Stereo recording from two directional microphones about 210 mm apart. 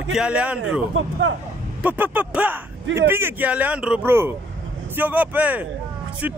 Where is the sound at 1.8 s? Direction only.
10° right (ahead or behind).